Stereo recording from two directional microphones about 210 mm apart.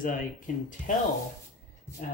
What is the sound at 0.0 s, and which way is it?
Speech, 40° left (ahead or behind).